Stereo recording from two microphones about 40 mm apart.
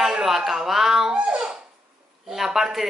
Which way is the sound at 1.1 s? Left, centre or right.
Right.